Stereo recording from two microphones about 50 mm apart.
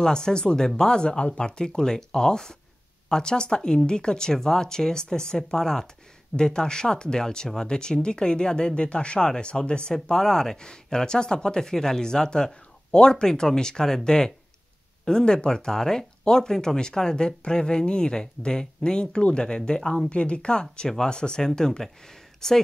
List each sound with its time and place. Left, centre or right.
0.0 s speech: centre
20.1 s speech: left